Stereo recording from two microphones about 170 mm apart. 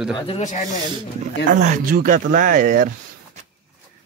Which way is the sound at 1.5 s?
50° right (ahead or behind).